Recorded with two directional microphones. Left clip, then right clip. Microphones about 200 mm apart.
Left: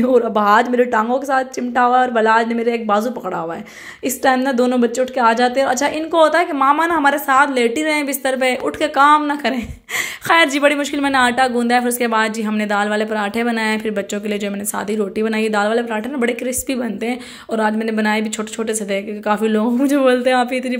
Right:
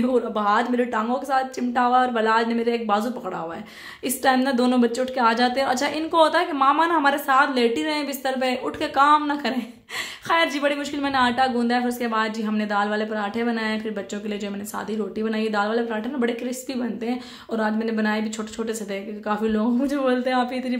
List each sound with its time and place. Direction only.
0.0 s a woman's voice: 25° left (ahead or behind)